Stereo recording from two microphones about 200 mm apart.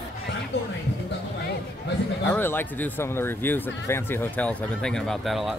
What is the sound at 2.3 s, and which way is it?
Speech, 10° left (ahead or behind).